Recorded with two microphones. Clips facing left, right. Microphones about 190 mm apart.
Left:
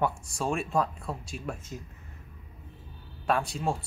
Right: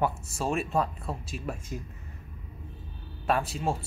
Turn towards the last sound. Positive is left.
turn(degrees=0)  # may be behind; listen again after turning